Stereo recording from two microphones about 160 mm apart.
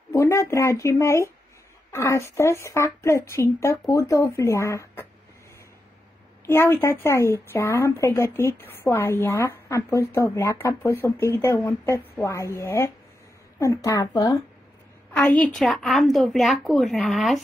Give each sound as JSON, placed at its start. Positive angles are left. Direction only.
{"t": 0.1, "sound": "a woman's voice", "side_deg": 20}
{"t": 6.4, "sound": "a woman's voice", "side_deg": 15}
{"t": 15.1, "sound": "a woman's voice", "side_deg": 5}